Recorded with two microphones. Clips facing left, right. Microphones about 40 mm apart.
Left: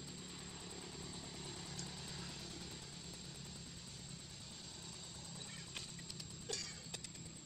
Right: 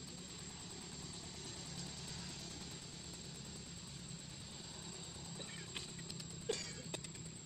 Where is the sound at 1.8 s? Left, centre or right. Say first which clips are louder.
Even; centre.